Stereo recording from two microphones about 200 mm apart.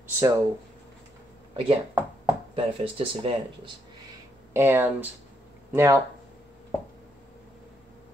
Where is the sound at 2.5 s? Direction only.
30° right (ahead or behind).